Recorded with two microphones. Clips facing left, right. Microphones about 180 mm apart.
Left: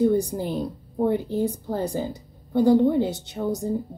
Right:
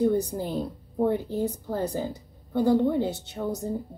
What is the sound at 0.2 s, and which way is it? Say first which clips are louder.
A woman's voice: left 2 dB; 10° left (ahead or behind).